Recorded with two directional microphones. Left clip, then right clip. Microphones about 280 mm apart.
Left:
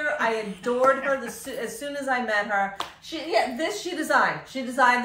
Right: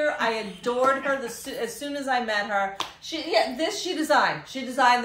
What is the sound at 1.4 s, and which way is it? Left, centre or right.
A woman's voice, centre.